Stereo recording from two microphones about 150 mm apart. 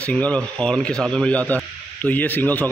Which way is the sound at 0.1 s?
5° left (ahead or behind).